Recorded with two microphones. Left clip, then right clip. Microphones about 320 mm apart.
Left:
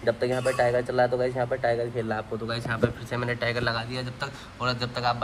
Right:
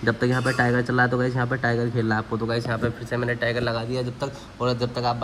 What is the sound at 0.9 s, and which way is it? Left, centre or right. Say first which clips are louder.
Speech: right 1 dB; left.